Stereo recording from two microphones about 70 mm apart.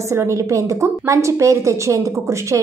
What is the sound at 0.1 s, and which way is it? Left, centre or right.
A woman's voice, right.